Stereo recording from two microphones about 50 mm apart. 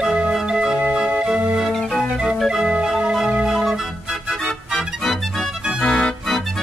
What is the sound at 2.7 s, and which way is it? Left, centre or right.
Music, centre.